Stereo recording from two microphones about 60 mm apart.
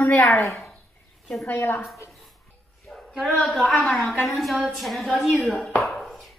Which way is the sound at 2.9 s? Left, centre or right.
Centre.